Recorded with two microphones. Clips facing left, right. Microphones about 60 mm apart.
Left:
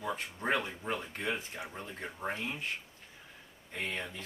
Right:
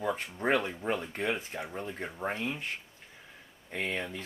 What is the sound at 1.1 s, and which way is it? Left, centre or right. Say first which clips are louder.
Speech: right 4 dB; right.